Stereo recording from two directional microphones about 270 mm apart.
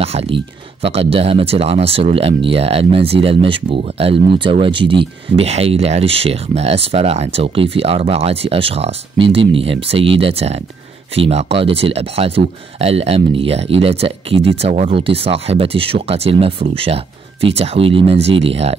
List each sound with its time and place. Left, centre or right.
0.0 s speech: right